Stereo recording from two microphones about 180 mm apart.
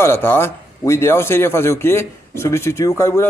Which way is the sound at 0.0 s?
15° left (ahead or behind).